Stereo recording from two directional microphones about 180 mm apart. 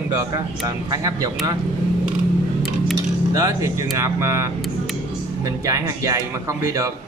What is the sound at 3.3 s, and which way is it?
Speech, 20° right (ahead or behind).